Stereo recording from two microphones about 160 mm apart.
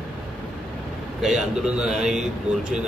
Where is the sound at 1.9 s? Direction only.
5° right (ahead or behind).